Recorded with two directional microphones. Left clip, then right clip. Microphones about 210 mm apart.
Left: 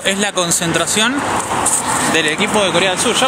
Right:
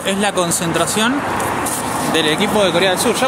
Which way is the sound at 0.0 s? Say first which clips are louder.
Even; 10° left (ahead or behind).